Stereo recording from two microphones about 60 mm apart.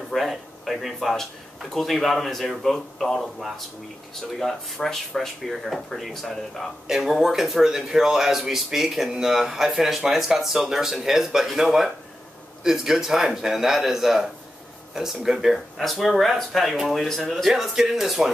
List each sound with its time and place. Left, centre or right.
0.1 s speech: centre
6.9 s speech: centre